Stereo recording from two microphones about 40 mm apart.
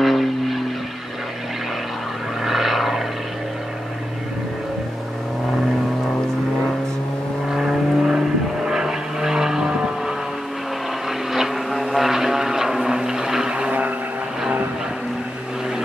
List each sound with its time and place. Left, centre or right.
0.0 s vehicle: centre
2.4 s vehicle: centre
7.5 s vehicle: centre
11.1 s vehicle: centre
13.7 s vehicle: right